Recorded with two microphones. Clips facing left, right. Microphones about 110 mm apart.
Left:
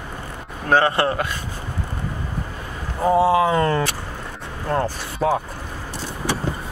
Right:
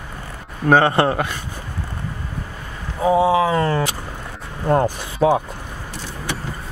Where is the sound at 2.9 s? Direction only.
5° right (ahead or behind).